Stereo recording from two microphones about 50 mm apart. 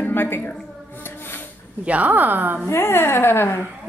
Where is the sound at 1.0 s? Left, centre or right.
Left.